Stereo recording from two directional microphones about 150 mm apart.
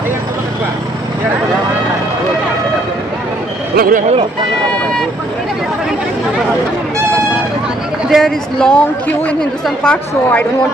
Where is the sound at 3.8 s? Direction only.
70° right (ahead or behind).